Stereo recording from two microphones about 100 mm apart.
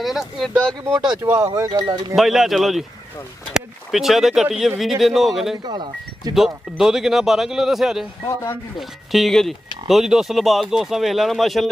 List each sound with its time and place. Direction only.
0.0 s speech: centre (ahead or behind)
1.2 s speech: 25° right (ahead or behind)
1.7 s speech: 45° right (ahead or behind)
2.1 s speech: centre (ahead or behind)
5.7 s speech: 45° right (ahead or behind)
6.3 s speech: 5° right (ahead or behind)